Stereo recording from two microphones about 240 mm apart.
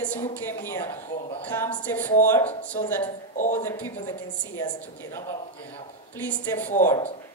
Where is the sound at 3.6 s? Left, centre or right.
Centre.